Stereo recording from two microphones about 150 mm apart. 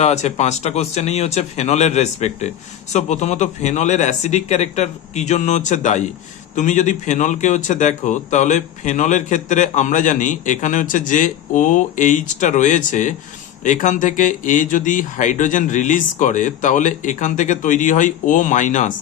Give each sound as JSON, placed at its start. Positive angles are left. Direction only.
{"t": 0.0, "sound": "a man's voice", "side_deg": 50}